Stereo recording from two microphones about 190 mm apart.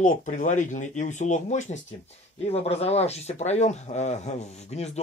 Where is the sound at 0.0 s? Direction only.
40° left (ahead or behind).